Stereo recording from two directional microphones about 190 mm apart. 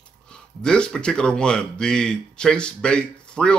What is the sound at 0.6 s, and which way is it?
Speech, 5° left (ahead or behind).